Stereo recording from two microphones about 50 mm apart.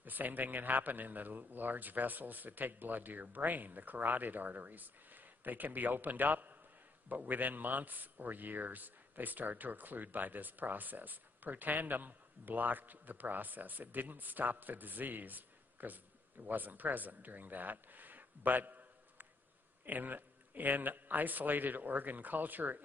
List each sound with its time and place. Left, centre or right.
0.0 s a man's voice: right